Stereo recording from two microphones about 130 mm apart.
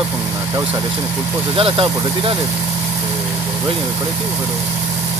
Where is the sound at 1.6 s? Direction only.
45° right (ahead or behind).